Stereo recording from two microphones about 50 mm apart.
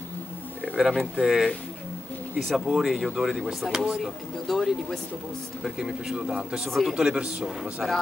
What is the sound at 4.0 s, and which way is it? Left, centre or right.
Speech, centre.